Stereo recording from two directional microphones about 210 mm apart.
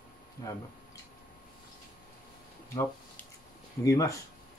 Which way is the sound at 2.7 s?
10° left (ahead or behind).